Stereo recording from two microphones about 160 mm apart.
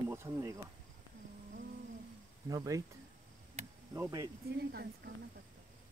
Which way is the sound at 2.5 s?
20° right (ahead or behind).